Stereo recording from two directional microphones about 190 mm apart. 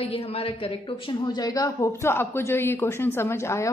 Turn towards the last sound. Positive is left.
turn(degrees=15)  # may be behind; listen again after turning